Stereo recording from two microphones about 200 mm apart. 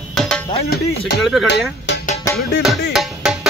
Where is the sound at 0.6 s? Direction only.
50° left (ahead or behind).